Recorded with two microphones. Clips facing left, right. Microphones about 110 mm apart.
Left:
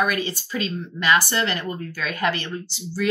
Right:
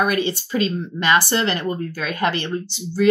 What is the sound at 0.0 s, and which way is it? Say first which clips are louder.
Speech: right 3 dB; 25° right (ahead or behind).